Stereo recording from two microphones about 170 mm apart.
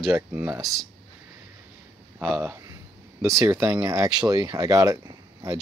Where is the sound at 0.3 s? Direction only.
10° right (ahead or behind).